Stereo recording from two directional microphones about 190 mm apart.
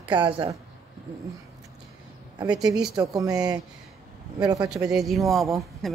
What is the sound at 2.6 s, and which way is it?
A woman's voice, 20° right (ahead or behind).